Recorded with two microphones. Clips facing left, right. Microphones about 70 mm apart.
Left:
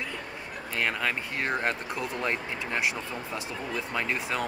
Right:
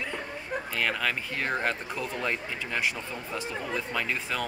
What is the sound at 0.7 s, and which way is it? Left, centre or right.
Speech, centre.